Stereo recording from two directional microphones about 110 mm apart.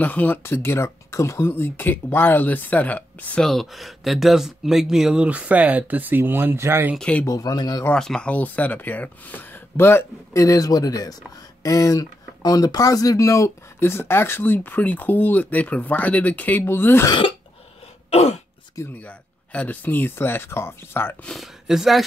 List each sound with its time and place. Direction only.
0.0 s speech: 15° left (ahead or behind)
3.4 s speech: centre (ahead or behind); by 7.0 s 20° right (ahead or behind)
7.0 s speech: 10° left (ahead or behind)
7.2 s speech: 35° left (ahead or behind)
7.9 s speech: 5° left (ahead or behind)
18.9 s speech: 15° left (ahead or behind)
21.3 s speech: centre (ahead or behind)